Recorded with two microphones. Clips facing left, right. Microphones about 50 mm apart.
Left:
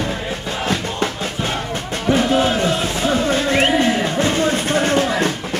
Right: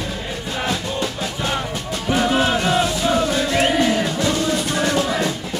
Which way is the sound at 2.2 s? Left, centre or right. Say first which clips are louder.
Right 2 dB; right.